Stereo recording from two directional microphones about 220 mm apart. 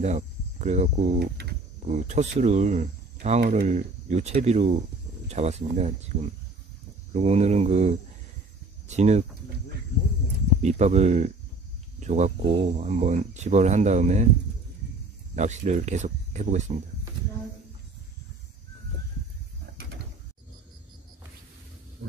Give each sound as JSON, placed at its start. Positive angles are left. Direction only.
{"t": 0.0, "sound": "speech", "side_deg": -30}
{"t": 10.6, "sound": "speech", "side_deg": -30}
{"t": 15.3, "sound": "speech", "side_deg": -30}